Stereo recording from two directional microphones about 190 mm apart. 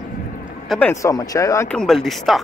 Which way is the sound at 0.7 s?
5° left (ahead or behind).